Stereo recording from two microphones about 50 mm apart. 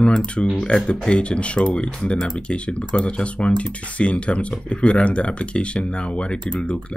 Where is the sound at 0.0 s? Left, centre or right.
Left.